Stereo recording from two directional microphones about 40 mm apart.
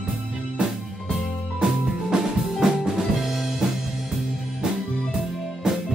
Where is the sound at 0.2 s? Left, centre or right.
Right.